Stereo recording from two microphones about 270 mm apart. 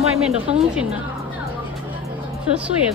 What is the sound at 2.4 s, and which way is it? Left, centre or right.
Speech, centre.